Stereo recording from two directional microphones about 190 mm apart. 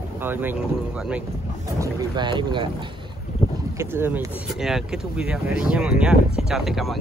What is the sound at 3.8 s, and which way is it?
Speech, 10° right (ahead or behind).